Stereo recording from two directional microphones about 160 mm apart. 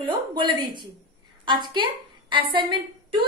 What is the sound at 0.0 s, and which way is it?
A woman's voice, 30° right (ahead or behind).